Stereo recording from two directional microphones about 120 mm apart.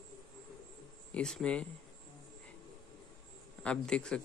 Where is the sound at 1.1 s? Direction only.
5° left (ahead or behind).